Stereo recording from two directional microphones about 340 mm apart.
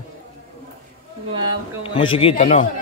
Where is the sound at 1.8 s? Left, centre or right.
Centre.